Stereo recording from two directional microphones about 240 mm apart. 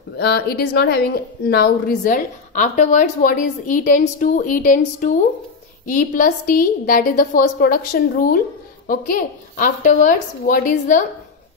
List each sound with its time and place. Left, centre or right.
0.2 s a woman's voice: left
9.6 s a woman's voice: left